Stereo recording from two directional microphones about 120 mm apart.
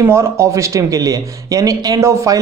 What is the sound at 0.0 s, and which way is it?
Speech, 25° right (ahead or behind).